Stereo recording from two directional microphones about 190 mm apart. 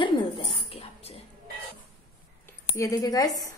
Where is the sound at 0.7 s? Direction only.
30° left (ahead or behind).